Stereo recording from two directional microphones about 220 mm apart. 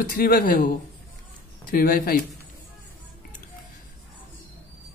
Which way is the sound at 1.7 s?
40° left (ahead or behind).